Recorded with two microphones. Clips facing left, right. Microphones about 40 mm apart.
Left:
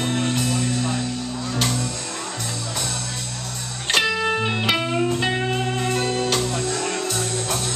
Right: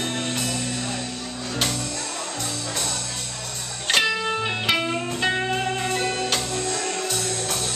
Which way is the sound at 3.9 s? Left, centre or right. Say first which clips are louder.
Left 1 dB; centre.